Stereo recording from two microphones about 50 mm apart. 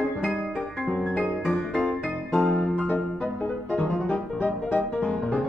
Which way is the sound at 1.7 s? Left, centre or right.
Centre.